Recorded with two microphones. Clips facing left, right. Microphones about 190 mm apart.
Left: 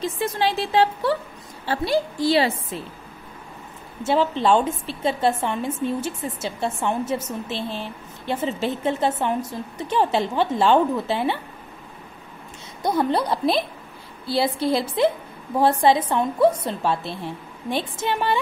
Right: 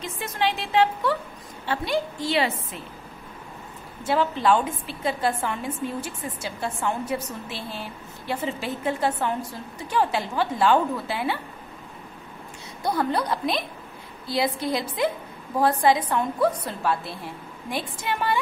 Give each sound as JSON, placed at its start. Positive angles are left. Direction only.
{"t": 0.0, "sound": "a woman's voice", "side_deg": 35}
{"t": 4.0, "sound": "a woman's voice", "side_deg": 25}
{"t": 12.8, "sound": "a woman's voice", "side_deg": 25}